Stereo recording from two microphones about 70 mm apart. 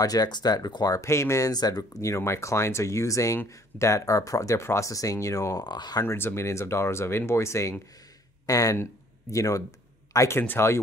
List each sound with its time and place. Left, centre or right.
0.0 s speech: left
1.0 s speech: left
1.5 s speech: left
2.0 s speech: left
5.6 s speech: left
6.0 s speech: left
8.5 s speech: left